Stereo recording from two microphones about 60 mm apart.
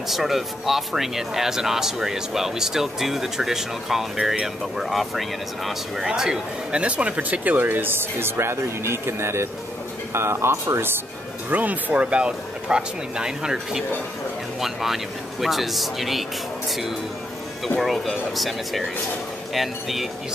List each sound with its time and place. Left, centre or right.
0.1 s speech: centre; by 10.9 s right
11.5 s speech: right; by 20.1 s centre